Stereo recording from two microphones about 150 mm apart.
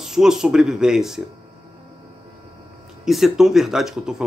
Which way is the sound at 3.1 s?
Centre (ahead or behind).